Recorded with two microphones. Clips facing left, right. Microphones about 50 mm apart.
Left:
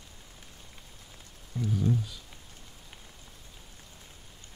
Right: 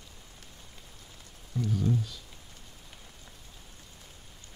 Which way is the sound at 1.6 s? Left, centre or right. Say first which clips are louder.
Left 1 dB; centre.